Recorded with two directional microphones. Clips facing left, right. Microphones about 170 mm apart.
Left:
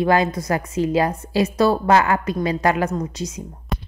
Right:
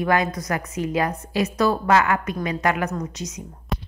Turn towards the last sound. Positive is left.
turn(degrees=0)  # may be behind; listen again after turning